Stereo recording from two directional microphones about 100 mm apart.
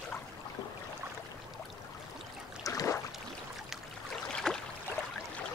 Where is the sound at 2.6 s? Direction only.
30° left (ahead or behind).